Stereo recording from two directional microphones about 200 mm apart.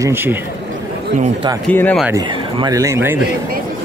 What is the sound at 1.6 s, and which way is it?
Speech, 5° left (ahead or behind).